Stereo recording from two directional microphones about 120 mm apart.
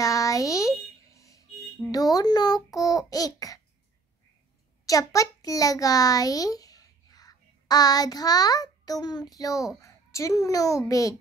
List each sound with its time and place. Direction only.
0.0 s a sound: 30° left (ahead or behind)
1.9 s speech: 30° left (ahead or behind)
4.8 s a child's voice: 30° left (ahead or behind)